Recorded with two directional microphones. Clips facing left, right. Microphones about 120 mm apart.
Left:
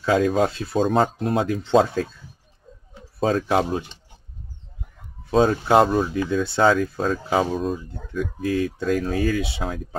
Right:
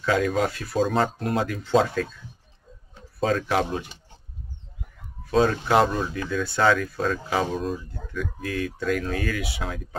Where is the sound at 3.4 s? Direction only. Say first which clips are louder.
Left 3 dB; 20° left (ahead or behind).